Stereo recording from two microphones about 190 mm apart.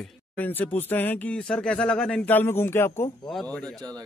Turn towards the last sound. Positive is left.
turn(degrees=-20)  # may be behind; listen again after turning